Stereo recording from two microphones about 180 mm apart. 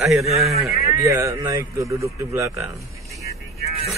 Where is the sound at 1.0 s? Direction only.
15° right (ahead or behind).